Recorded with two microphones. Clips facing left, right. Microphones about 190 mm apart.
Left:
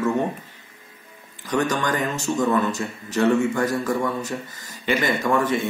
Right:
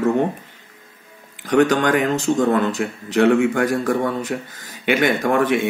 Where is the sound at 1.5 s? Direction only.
65° right (ahead or behind).